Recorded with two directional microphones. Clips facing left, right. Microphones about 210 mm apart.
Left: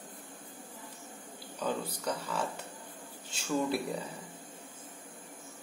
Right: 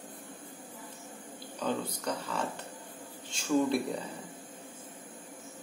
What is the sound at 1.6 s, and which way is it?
Speech, 10° left (ahead or behind).